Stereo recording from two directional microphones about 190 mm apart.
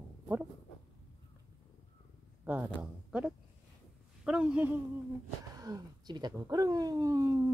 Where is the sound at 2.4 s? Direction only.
10° right (ahead or behind).